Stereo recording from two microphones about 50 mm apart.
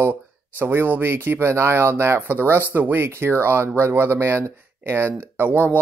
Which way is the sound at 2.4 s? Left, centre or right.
Right.